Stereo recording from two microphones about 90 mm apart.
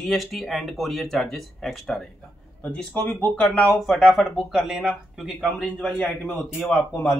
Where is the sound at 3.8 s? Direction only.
Centre (ahead or behind).